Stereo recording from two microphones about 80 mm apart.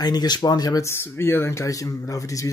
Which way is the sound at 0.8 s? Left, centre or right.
Left.